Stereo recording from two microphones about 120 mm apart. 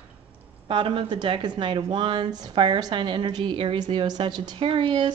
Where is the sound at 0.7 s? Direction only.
45° right (ahead or behind).